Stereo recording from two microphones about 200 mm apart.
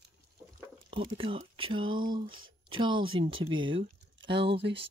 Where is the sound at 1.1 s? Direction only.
25° right (ahead or behind).